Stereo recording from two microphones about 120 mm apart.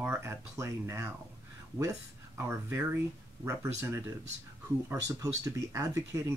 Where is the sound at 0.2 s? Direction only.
20° right (ahead or behind).